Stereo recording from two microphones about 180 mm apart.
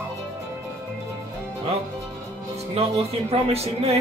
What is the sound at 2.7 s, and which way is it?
Speech, 35° right (ahead or behind).